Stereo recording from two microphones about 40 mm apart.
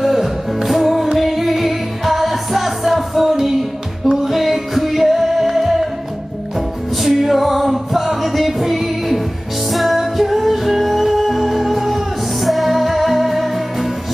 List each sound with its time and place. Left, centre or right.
0.0 s music: centre
7.0 s music: centre